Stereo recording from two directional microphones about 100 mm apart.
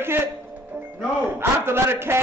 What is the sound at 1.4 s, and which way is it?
Speech, 25° right (ahead or behind).